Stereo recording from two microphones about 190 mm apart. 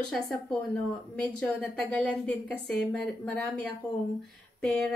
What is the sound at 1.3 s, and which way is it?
A woman's voice, 5° left (ahead or behind).